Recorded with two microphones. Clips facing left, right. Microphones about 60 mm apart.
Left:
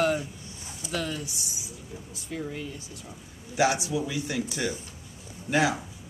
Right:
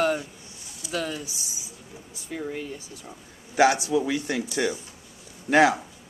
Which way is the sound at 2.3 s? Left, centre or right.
Centre.